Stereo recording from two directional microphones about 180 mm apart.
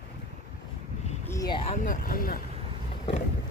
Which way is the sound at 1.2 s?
20° left (ahead or behind).